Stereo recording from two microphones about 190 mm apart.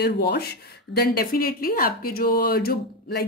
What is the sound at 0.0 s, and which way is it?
A woman's voice, 55° left (ahead or behind).